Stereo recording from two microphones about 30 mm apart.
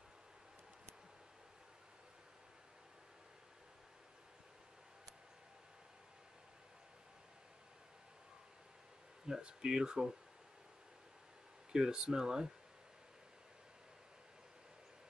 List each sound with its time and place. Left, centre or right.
9.2 s a sound: right
9.5 s speech: right
11.7 s speech: right